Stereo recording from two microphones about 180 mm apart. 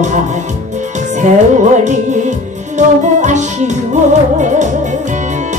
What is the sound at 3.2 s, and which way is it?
Music, 40° right (ahead or behind).